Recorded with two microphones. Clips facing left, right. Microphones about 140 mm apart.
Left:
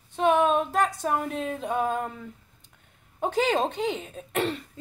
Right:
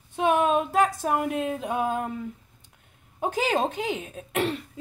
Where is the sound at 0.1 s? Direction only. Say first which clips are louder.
Even; 10° right (ahead or behind).